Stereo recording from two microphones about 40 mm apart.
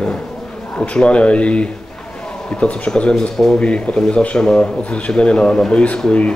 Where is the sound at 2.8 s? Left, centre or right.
Left.